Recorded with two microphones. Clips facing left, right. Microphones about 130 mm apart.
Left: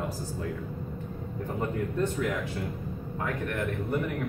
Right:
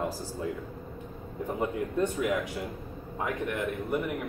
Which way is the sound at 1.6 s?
10° right (ahead or behind).